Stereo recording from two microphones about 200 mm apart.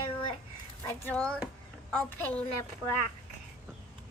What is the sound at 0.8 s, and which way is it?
A woman's voice, 10° left (ahead or behind).